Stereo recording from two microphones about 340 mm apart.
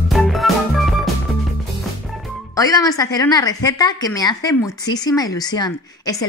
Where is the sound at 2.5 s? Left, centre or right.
Centre.